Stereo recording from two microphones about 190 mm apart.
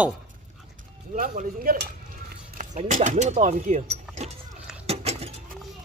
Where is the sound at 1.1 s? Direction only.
45° right (ahead or behind).